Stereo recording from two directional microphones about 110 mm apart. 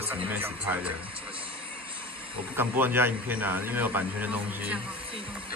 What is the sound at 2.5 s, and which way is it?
A man's voice, 20° right (ahead or behind).